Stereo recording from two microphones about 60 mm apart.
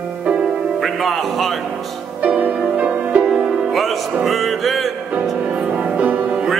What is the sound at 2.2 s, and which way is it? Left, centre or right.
Music, right.